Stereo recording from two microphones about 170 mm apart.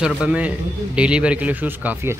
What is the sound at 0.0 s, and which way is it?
A man's voice, 5° right (ahead or behind).